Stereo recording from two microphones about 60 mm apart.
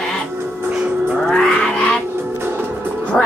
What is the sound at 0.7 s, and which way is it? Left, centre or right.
Music, right.